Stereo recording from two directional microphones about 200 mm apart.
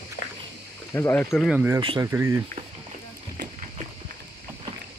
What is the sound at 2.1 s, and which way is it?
Speech, 10° right (ahead or behind).